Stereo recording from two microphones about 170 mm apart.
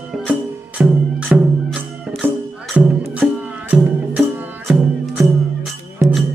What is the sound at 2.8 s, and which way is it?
Music, 10° right (ahead or behind).